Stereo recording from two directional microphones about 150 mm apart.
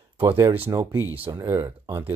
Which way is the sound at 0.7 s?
20° right (ahead or behind).